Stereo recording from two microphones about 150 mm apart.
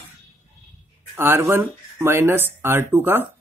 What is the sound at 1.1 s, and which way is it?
Speech, 15° right (ahead or behind).